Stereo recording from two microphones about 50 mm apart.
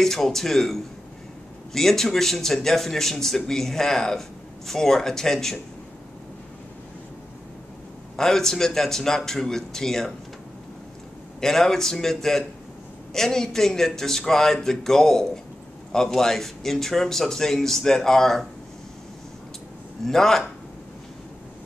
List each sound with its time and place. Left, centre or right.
0.0 s a man's voice: centre
8.2 s a man's voice: centre
11.4 s a man's voice: centre
20.1 s a man's voice: centre